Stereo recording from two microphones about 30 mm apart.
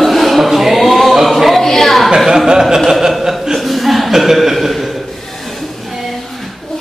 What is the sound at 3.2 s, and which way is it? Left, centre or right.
Chuckle, centre.